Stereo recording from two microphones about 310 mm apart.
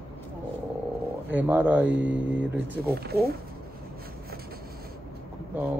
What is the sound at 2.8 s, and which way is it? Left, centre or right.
Speech, right.